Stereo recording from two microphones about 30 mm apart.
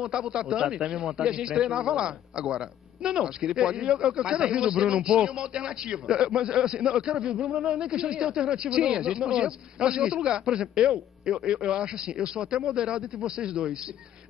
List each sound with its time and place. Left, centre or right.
0.3 s speech: right